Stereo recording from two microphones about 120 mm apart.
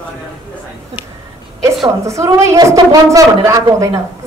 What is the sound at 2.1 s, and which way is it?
Speech, 25° right (ahead or behind).